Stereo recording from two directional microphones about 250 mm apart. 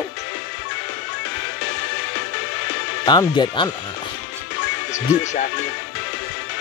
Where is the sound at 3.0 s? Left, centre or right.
Centre.